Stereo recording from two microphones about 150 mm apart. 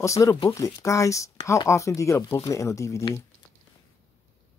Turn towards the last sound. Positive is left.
turn(degrees=20)  # may be behind; listen again after turning